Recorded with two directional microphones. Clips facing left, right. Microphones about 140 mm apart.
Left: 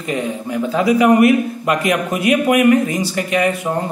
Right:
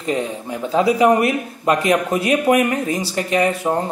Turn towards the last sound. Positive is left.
turn(degrees=-30)  # may be behind; listen again after turning